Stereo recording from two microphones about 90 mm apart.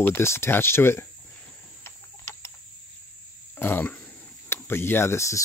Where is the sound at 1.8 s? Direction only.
25° left (ahead or behind).